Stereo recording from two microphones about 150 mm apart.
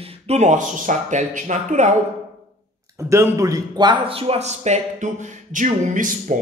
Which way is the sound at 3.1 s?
20° right (ahead or behind).